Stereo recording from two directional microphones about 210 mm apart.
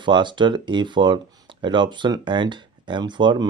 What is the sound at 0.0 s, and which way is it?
Speech, 20° right (ahead or behind).